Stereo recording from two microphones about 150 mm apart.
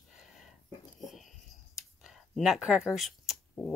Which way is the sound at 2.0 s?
5° right (ahead or behind).